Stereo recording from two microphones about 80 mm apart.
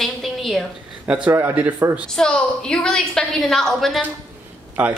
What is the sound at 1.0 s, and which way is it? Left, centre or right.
Speech, centre.